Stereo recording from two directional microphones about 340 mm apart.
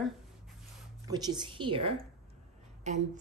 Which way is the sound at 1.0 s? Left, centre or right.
Centre.